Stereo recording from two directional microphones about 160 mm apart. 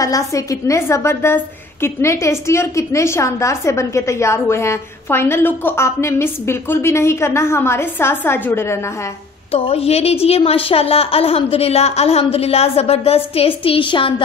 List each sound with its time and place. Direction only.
0.0 s a woman's voice: 20° left (ahead or behind)
9.5 s a woman's voice: 35° left (ahead or behind)